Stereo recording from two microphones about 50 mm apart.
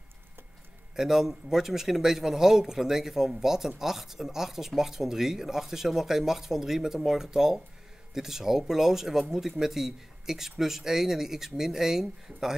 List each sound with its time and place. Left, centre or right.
0.9 s speech: centre